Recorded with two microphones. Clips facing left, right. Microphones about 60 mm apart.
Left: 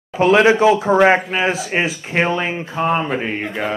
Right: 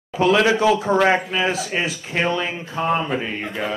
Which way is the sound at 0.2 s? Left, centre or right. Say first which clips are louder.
Left 4 dB; left.